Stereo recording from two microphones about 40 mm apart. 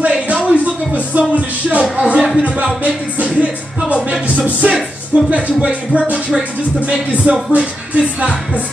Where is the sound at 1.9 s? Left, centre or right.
Right.